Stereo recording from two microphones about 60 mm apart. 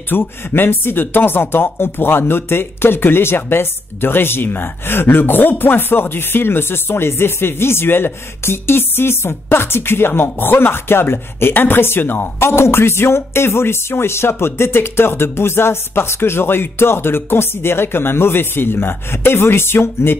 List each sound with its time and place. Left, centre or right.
0.1 s speech: left